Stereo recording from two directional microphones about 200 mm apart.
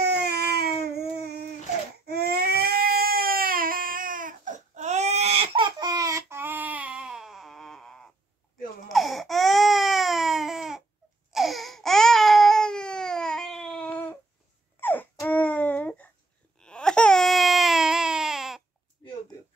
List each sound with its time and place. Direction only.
0.0 s baby cry: 55° right (ahead or behind)
2.0 s baby cry: 50° right (ahead or behind); by 14.1 s 5° left (ahead or behind)
14.8 s a sound: 10° left (ahead or behind)
16.5 s baby cry: 5° left (ahead or behind)